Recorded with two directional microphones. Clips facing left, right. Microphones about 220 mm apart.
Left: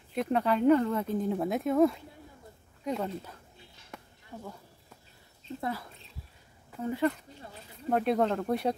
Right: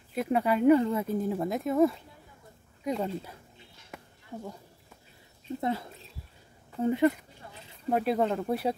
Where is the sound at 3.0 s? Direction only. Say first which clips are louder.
Right 2 dB; 10° right (ahead or behind).